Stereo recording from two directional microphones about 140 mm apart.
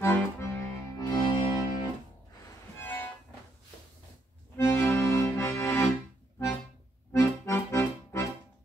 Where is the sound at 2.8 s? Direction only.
15° left (ahead or behind).